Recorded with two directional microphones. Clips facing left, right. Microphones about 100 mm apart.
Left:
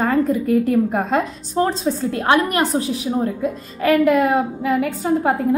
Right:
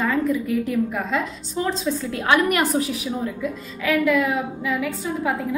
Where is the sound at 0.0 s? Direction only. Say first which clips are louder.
Left 4 dB; 50° left (ahead or behind).